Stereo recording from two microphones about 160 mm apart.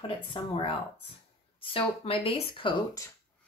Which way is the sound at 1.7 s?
35° left (ahead or behind).